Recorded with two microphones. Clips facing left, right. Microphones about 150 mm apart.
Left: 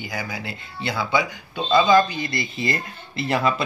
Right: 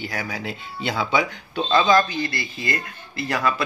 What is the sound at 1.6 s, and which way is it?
Speech, 10° left (ahead or behind).